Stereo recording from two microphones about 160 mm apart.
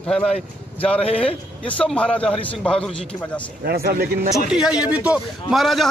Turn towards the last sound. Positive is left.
turn(degrees=0)  # may be behind; listen again after turning